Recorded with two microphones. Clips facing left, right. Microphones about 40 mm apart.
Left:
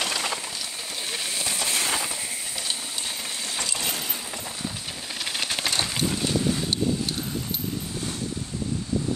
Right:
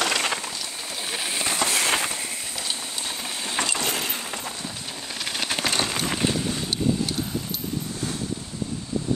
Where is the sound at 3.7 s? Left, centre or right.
Right.